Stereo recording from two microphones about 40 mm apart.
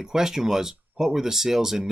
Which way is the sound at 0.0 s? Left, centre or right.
Centre.